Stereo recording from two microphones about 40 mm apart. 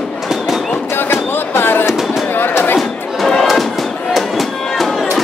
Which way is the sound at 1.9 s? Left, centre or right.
Centre.